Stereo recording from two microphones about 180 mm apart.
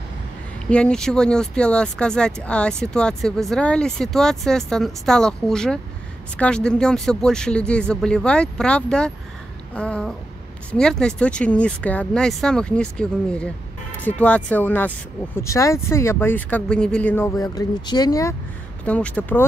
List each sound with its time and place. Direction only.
0.7 s speech: 5° left (ahead or behind)
17.4 s speech: 20° left (ahead or behind)
18.9 s speech: 5° left (ahead or behind)